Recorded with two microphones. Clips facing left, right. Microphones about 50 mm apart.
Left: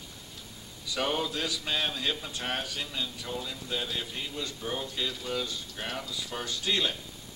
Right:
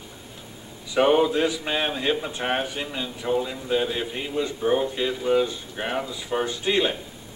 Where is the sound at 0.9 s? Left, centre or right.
Right.